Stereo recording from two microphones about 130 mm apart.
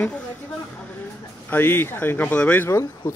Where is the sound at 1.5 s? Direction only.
15° left (ahead or behind).